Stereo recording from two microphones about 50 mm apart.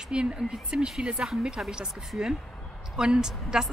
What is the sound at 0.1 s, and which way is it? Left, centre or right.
A woman's voice, centre.